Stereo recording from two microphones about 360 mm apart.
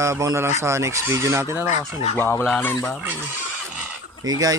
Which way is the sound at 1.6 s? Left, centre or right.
Centre.